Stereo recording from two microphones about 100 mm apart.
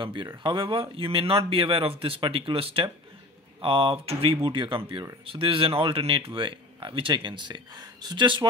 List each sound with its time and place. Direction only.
0.0 s speech: 55° right (ahead or behind)